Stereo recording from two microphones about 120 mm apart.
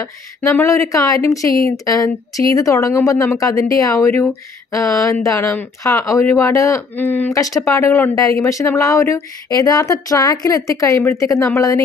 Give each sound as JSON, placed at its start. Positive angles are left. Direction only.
{"t": 0.0, "sound": "a woman's voice", "side_deg": 20}
{"t": 7.3, "sound": "a woman's voice", "side_deg": 30}